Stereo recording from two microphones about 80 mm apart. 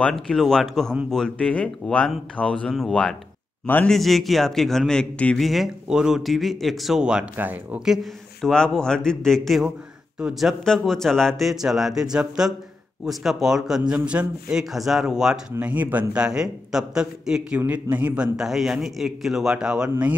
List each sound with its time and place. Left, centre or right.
0.0 s speech: centre
5.4 s speech: centre
7.3 s speech: right
7.8 s speech: centre
10.1 s speech: centre
10.6 s speech: centre
15.6 s a man's voice: centre
17.6 s a man's voice: centre